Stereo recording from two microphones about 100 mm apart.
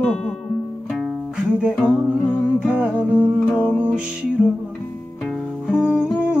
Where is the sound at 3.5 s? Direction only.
20° left (ahead or behind).